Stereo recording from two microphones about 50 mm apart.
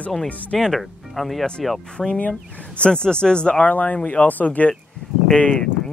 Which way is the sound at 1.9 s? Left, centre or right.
Centre.